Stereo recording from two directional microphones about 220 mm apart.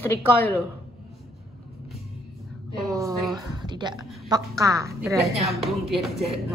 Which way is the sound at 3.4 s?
20° right (ahead or behind).